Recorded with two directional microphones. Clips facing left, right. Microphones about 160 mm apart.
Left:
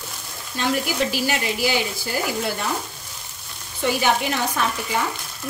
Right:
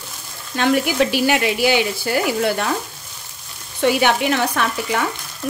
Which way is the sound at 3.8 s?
75° right (ahead or behind).